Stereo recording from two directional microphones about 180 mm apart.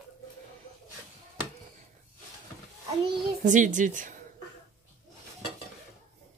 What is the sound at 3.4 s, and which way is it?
Speech, 45° right (ahead or behind).